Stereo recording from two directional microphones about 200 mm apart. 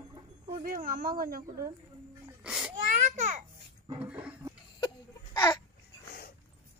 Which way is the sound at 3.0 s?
40° right (ahead or behind).